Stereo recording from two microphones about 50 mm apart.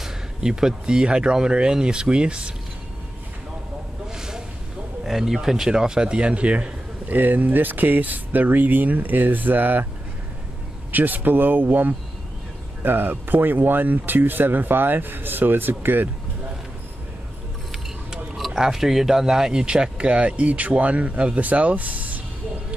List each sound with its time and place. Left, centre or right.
0.0 s speech: centre
4.1 s a sound: centre
5.0 s speech: centre; by 6.7 s right
7.1 s speech: right
10.9 s speech: right
18.4 s speech: centre; by 22.2 s right